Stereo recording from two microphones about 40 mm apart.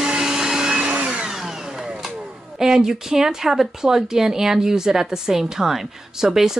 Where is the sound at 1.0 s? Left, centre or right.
Right.